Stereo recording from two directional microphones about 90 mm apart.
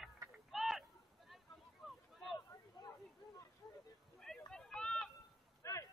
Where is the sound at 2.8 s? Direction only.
45° left (ahead or behind).